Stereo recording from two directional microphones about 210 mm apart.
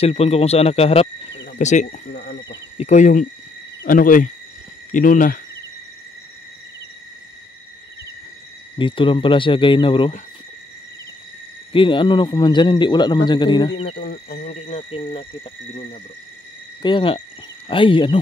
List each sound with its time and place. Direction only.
0.0 s a man's voice: 30° left (ahead or behind)
1.6 s hoot: 35° left (ahead or behind)
2.1 s speech: 50° left (ahead or behind)
2.8 s hoot: 35° left (ahead or behind)
8.7 s a man's voice: 25° left (ahead or behind)
11.7 s a man's voice: 25° left (ahead or behind)
13.9 s cricket: 45° left (ahead or behind); by 15.2 s 25° left (ahead or behind)
16.8 s a man's voice: 25° left (ahead or behind)